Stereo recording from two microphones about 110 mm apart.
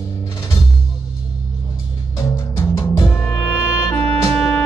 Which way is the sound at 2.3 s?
25° left (ahead or behind).